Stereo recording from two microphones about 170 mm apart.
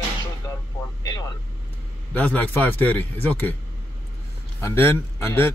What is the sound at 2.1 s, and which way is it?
Speech, 10° left (ahead or behind).